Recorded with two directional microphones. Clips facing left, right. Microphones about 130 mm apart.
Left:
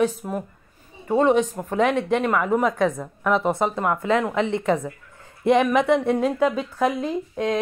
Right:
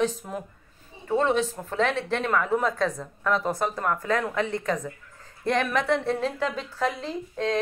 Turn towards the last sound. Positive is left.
turn(degrees=10)  # may be behind; listen again after turning